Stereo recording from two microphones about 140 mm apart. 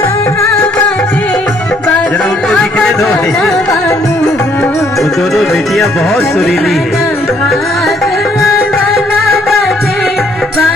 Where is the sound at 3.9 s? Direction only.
20° left (ahead or behind).